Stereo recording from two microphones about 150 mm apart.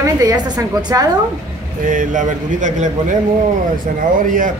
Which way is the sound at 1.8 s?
60° right (ahead or behind).